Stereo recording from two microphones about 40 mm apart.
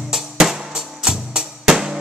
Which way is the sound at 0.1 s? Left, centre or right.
Centre.